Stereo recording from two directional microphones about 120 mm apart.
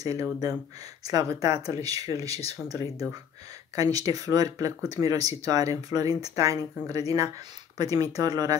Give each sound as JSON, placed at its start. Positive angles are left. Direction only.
{"t": 0.0, "sound": "speech", "side_deg": -30}